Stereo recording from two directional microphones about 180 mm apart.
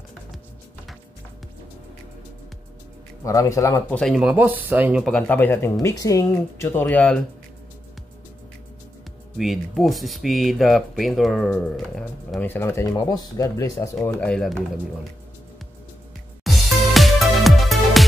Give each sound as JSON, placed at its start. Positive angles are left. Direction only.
{"t": 3.3, "sound": "speech", "side_deg": 15}
{"t": 4.0, "sound": "speech", "side_deg": -5}
{"t": 5.0, "sound": "speech", "side_deg": 5}
{"t": 9.4, "sound": "speech", "side_deg": 0}
{"t": 12.9, "sound": "speech", "side_deg": 25}
{"t": 16.4, "sound": "music", "side_deg": 0}